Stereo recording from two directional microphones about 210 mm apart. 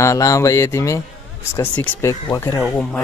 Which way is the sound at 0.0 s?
15° left (ahead or behind).